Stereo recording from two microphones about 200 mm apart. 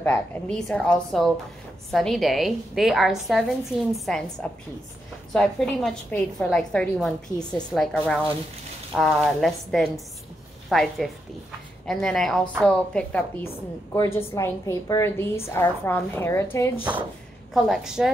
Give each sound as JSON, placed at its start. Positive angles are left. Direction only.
{"t": 0.0, "sound": "a woman's voice", "side_deg": 5}
{"t": 17.6, "sound": "a woman's voice", "side_deg": 0}